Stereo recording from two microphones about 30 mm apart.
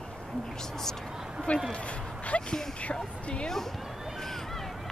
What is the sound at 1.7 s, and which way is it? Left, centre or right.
Speech, left.